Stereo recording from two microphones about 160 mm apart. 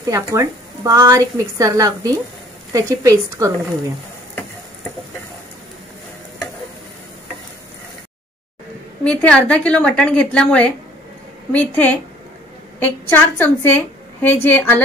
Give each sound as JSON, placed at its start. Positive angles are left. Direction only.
{"t": 0.0, "sound": "a woman's voice", "side_deg": -20}
{"t": 9.0, "sound": "a woman's voice", "side_deg": 10}